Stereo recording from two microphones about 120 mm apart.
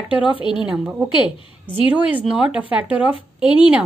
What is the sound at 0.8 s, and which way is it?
Speech, 10° right (ahead or behind).